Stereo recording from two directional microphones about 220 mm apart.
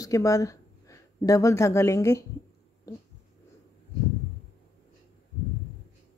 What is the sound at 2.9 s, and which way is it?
Dog, 15° left (ahead or behind).